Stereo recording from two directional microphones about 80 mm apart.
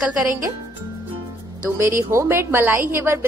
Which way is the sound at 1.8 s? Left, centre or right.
Right.